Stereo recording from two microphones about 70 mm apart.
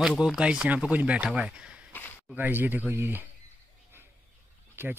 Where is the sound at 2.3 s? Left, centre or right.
Right.